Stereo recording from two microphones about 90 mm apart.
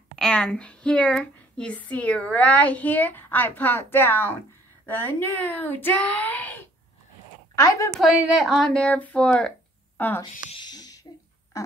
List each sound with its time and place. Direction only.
0.1 s a woman's voice: 10° left (ahead or behind)
7.5 s a woman's voice: 35° left (ahead or behind)
7.9 s a woman's voice: centre (ahead or behind)
8.7 s a woman's voice: 15° left (ahead or behind)
10.2 s speech: 50° left (ahead or behind)